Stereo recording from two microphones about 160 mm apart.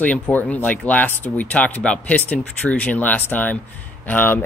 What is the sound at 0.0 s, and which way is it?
Speech, 10° left (ahead or behind).